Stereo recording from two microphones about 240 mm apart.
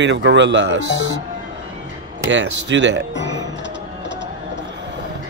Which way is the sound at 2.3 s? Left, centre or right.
Right.